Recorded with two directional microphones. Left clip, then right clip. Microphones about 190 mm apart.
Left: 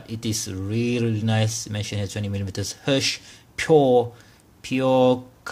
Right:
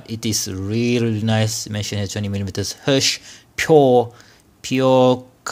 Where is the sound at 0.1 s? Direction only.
25° right (ahead or behind).